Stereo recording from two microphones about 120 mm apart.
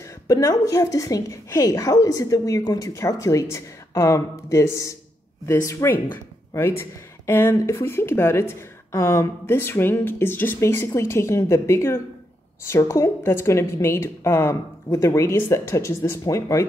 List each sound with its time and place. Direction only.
0.0 s a woman's voice: 25° left (ahead or behind)